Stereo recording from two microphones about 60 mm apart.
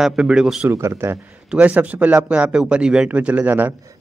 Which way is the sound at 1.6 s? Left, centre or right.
Right.